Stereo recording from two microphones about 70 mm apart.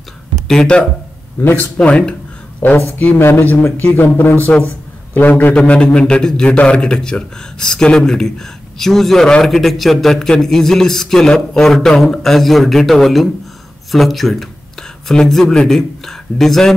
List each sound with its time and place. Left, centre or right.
0.5 s a man's voice: centre
1.4 s a man's voice: left
1.8 s a man's voice: centre
5.6 s a man's voice: centre